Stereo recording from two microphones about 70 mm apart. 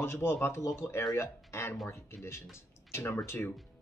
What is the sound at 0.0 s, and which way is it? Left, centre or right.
Speech, left.